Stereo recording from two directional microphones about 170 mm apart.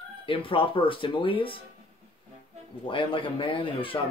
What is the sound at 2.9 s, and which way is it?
Speech, 30° left (ahead or behind).